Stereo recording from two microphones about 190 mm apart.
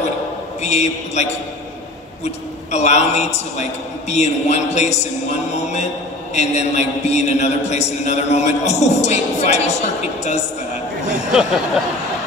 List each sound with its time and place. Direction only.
0.6 s a man's voice: 35° left (ahead or behind)